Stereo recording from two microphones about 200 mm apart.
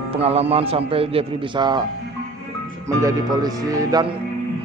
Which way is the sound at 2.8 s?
20° right (ahead or behind).